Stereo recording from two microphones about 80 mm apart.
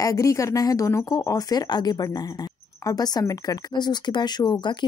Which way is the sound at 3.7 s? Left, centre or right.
Left.